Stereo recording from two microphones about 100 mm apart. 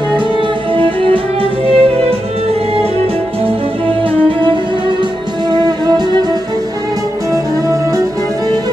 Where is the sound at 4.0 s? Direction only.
60° right (ahead or behind).